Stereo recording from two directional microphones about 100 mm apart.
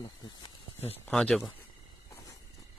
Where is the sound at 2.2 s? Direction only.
35° left (ahead or behind).